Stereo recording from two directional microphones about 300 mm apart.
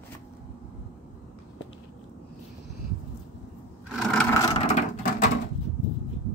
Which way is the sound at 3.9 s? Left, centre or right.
Centre.